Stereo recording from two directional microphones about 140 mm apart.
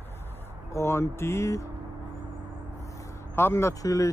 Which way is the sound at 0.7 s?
20° left (ahead or behind).